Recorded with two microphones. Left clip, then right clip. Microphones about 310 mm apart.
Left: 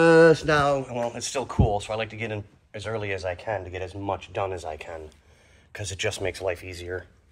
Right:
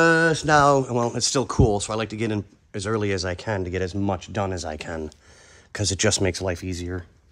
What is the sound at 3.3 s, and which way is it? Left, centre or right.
Speech, right.